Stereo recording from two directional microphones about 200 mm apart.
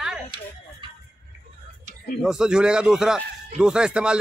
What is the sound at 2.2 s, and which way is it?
A man's voice, 5° right (ahead or behind).